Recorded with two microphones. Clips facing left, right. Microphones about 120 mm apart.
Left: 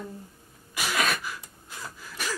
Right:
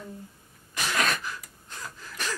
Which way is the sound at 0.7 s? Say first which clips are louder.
Even; 10° left (ahead or behind).